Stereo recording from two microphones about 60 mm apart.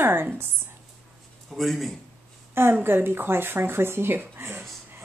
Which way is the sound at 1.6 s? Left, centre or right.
Centre.